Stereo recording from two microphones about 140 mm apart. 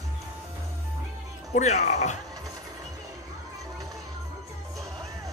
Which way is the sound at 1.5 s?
55° left (ahead or behind).